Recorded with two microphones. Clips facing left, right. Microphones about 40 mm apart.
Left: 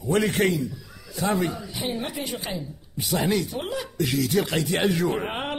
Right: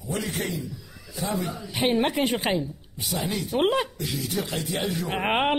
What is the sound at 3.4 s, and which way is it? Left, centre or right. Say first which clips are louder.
Speech: right 7 dB; right.